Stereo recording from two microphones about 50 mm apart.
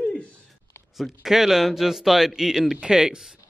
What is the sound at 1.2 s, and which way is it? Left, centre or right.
Speech, centre.